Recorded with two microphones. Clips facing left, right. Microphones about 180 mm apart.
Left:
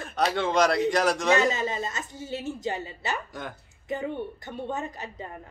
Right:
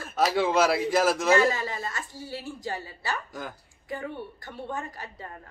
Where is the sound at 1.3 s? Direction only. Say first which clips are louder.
Right 1 dB; 20° left (ahead or behind).